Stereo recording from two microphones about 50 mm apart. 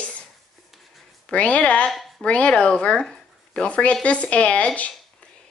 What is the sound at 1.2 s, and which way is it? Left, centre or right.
A woman's voice, left.